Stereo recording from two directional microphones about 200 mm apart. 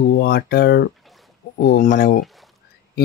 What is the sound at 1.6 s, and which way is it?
Speech, 45° left (ahead or behind).